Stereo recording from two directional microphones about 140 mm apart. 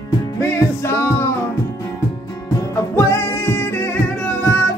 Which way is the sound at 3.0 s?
15° left (ahead or behind).